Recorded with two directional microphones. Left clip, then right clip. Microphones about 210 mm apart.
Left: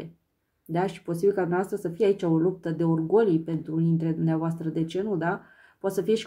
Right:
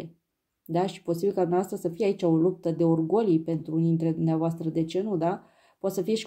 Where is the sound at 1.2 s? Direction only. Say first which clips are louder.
Left 2 dB; 35° right (ahead or behind).